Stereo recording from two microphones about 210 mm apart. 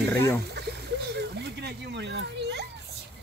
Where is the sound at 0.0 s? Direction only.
10° left (ahead or behind).